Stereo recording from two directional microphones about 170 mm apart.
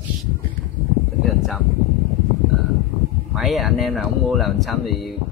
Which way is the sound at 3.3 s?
Centre (ahead or behind).